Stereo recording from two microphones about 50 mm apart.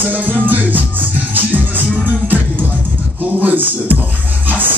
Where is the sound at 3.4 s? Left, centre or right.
Right.